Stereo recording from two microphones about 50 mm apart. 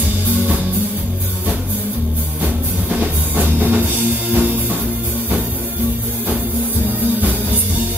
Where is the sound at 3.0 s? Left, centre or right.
Right.